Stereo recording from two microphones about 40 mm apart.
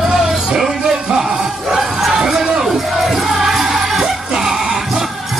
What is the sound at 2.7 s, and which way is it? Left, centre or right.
Music, centre.